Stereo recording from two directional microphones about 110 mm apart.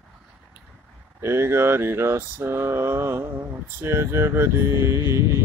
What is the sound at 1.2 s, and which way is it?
Speech, 25° right (ahead or behind).